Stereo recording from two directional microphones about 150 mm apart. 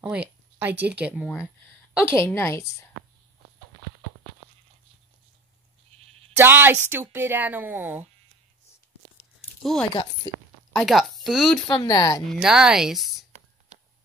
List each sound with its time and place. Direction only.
0.0 s speech: 10° right (ahead or behind)
2.1 s a woman's voice: 15° left (ahead or behind)
6.3 s a woman's voice: 15° right (ahead or behind)
9.6 s speech: centre (ahead or behind)
11.8 s a woman's voice: 25° left (ahead or behind)
12.3 s speech: centre (ahead or behind)